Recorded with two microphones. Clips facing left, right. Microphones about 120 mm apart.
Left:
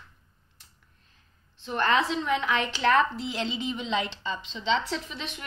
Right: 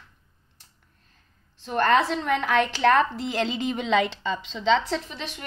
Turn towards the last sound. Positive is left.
turn(degrees=-40)  # may be behind; listen again after turning